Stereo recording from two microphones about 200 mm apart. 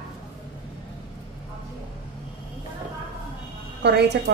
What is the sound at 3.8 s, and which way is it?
Speech, 55° right (ahead or behind).